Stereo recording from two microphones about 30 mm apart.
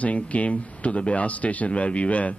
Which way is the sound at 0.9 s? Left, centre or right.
Left.